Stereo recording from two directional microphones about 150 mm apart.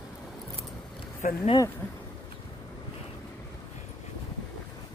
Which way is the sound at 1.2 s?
65° left (ahead or behind).